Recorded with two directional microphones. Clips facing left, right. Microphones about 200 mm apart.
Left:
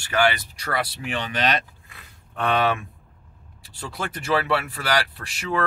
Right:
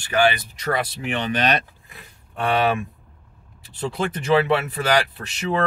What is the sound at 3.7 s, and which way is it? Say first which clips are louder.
Speech: right 7 dB; 20° right (ahead or behind).